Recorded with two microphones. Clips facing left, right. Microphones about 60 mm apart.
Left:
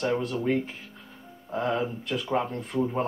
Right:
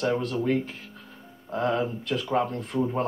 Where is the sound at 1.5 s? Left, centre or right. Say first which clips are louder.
Right 2 dB; centre.